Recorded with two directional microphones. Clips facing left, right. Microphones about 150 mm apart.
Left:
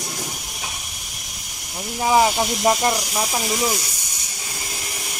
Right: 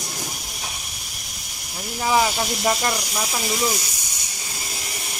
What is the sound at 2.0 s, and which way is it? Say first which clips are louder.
Speech: left 3 dB; 20° left (ahead or behind).